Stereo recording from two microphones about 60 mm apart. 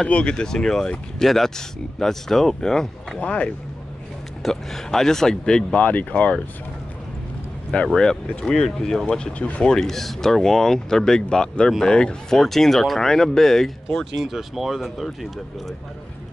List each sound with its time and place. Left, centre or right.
0.1 s speech: centre
3.2 s speech: centre
4.4 s speech: centre
5.8 s speech: left
7.7 s speech: centre
14.1 s speech: centre